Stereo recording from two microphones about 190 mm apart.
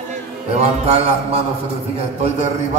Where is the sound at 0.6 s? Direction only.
30° right (ahead or behind).